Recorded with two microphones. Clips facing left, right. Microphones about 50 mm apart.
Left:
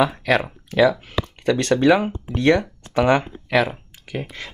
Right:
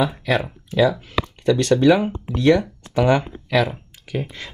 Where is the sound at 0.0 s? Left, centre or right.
Left.